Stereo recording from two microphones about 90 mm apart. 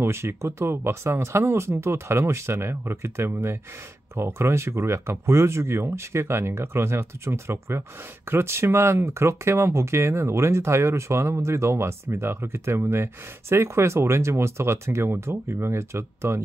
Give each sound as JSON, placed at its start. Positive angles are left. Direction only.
{"t": 0.0, "sound": "speech", "side_deg": -30}